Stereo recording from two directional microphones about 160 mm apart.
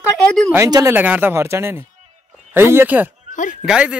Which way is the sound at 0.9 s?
10° right (ahead or behind).